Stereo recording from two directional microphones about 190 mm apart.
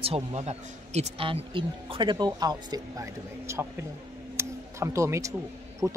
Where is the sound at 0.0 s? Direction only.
30° right (ahead or behind); by 3.6 s 15° right (ahead or behind).